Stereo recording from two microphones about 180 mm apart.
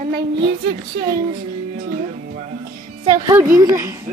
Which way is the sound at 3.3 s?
15° right (ahead or behind).